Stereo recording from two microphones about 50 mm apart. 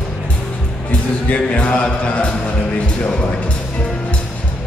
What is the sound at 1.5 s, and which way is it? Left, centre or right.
Speech, left.